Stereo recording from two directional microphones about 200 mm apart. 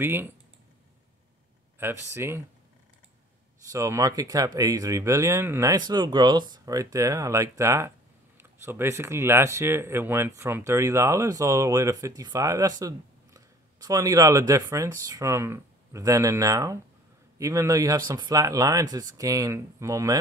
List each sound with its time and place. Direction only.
0.0 s speech: 10° right (ahead or behind)
1.8 s speech: 10° right (ahead or behind)
3.7 s speech: 15° right (ahead or behind)